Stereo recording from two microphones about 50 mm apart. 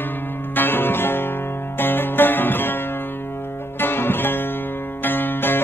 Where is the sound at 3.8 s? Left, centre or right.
Left.